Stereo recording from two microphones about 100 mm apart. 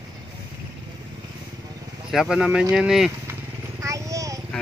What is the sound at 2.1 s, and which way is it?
Speech, 5° right (ahead or behind).